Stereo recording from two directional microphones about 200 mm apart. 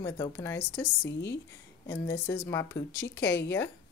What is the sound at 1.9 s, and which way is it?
Speech, 15° left (ahead or behind).